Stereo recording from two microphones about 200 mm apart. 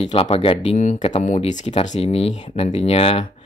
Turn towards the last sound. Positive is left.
turn(degrees=30)  # may be behind; listen again after turning